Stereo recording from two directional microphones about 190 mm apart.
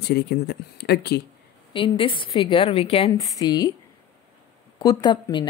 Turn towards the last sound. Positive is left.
turn(degrees=25)  # may be behind; listen again after turning